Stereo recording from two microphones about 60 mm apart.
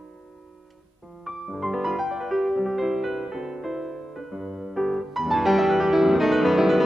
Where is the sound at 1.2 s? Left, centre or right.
Centre.